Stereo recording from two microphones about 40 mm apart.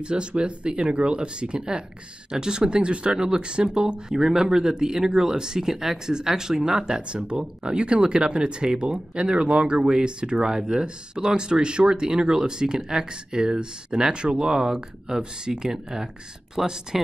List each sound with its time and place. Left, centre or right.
0.0 s speech: right